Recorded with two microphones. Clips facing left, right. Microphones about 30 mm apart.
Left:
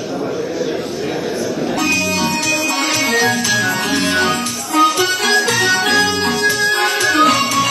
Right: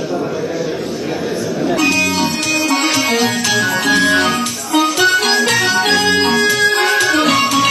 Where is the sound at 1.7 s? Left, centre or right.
Right.